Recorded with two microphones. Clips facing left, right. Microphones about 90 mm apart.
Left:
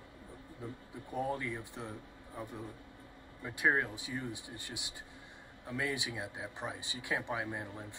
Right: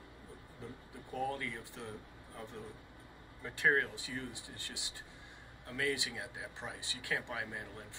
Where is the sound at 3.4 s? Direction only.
10° left (ahead or behind).